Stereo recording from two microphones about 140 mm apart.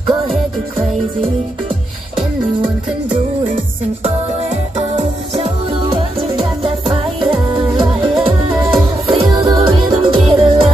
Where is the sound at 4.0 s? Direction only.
55° right (ahead or behind); by 7.3 s 35° right (ahead or behind).